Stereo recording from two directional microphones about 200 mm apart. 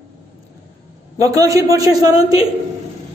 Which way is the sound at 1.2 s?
15° right (ahead or behind).